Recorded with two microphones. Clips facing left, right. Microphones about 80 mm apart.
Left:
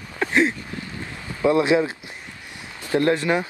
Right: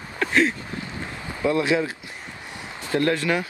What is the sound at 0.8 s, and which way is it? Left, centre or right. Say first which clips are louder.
Boat: right 1 dB; right.